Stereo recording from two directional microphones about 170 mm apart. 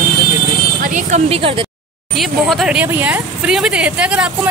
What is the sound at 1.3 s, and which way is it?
Speech, 30° right (ahead or behind).